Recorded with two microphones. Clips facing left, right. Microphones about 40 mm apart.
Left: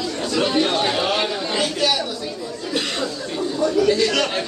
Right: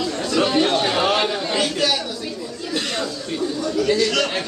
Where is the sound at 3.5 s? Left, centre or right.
Centre.